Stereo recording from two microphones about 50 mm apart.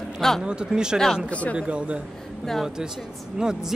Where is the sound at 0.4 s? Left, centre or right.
Centre.